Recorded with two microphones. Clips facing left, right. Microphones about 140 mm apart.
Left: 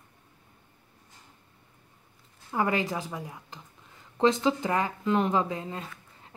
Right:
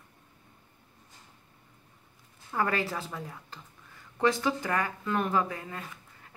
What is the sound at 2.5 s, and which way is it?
A woman's voice, 15° left (ahead or behind).